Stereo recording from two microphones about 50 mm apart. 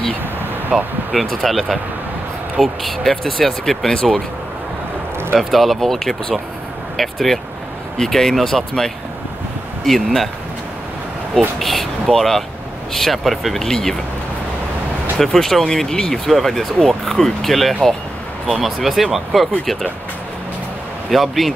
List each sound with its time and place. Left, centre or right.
0.7 s speech: centre
1.1 s speech: centre
3.0 s speech: centre
5.4 s speech: centre
11.3 s speech: centre
15.1 s speech: centre
21.1 s speech: centre